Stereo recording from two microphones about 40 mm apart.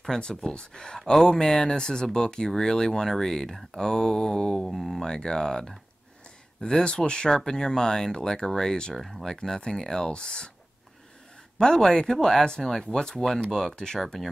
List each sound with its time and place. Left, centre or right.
0.1 s speech: centre
4.6 s speech: centre
5.0 s speech: centre
11.5 s speech: left